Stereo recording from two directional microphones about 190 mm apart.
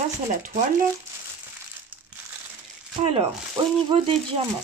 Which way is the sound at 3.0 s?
30° right (ahead or behind).